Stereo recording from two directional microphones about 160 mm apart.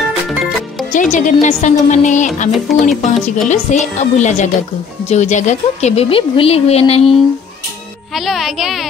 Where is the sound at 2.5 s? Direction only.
Centre (ahead or behind).